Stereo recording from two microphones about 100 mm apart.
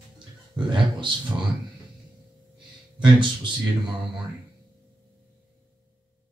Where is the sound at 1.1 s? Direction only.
55° right (ahead or behind).